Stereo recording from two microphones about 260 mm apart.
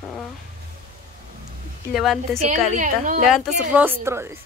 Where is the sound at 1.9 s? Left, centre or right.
Centre.